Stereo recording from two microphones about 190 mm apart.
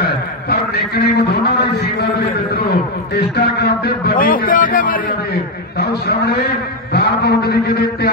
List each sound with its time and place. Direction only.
0.0 s a man's voice: 55° left (ahead or behind)